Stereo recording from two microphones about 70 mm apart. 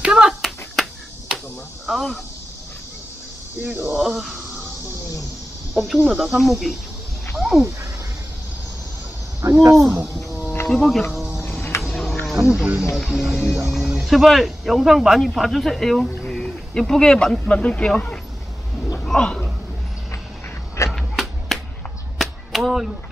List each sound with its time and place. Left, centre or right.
0.0 s finger snapping: centre
1.9 s speech: centre
3.6 s speech: right
3.9 s speech: centre
6.0 s speech: centre
9.4 s speech: right
10.7 s speech: centre
11.9 s a sound: centre
12.4 s speech: centre
18.9 s a sound: centre
20.9 s a sound: centre
22.2 s whip: centre